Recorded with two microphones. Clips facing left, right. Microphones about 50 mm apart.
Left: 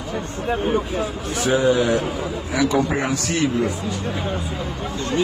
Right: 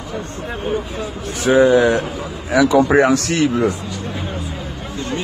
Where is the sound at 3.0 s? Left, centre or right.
Right.